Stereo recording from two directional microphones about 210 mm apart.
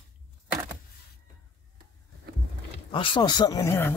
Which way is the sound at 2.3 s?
50° right (ahead or behind).